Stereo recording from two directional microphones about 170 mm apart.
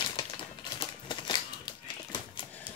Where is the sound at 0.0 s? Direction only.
30° left (ahead or behind).